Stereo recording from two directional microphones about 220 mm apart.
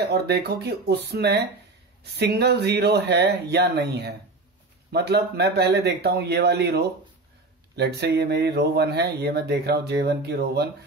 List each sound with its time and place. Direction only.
0.0 s speech: 50° right (ahead or behind)